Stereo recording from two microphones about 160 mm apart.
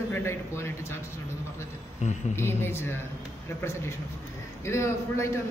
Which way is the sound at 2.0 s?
50° left (ahead or behind).